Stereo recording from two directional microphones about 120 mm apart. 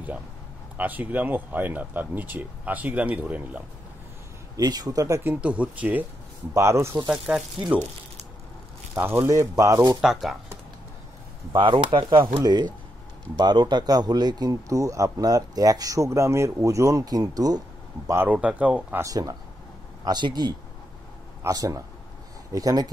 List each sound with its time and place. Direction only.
0.7 s speech: 15° right (ahead or behind)
4.6 s speech: 35° right (ahead or behind)
5.3 s speech: 10° right (ahead or behind)
6.5 s speech: 25° right (ahead or behind)
7.1 s speech: 5° right (ahead or behind)
8.9 s speech: 20° right (ahead or behind)
11.5 s speech: 45° right (ahead or behind)
18.0 s speech: 20° right (ahead or behind)
18.9 s speech: 30° right (ahead or behind)